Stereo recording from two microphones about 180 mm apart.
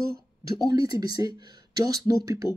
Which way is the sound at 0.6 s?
20° right (ahead or behind).